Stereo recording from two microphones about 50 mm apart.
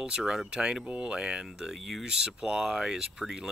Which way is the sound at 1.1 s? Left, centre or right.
Centre.